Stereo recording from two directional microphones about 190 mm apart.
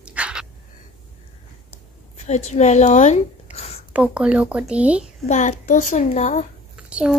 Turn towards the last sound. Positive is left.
turn(degrees=-5)  # may be behind; listen again after turning